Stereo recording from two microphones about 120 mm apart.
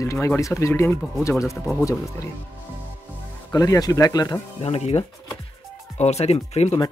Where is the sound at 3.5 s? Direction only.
30° left (ahead or behind).